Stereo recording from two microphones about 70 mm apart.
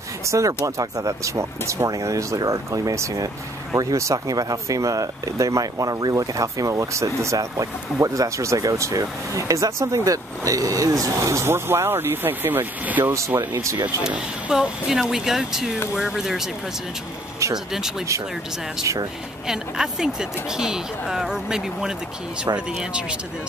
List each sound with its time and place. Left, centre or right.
0.2 s speech: right
13.4 s speech: right
14.0 s speech: centre
19.4 s speech: centre